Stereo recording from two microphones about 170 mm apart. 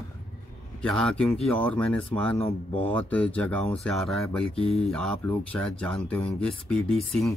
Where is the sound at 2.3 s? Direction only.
35° left (ahead or behind).